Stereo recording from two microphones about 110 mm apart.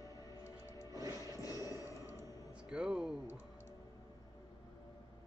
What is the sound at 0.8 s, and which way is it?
Music, 30° right (ahead or behind).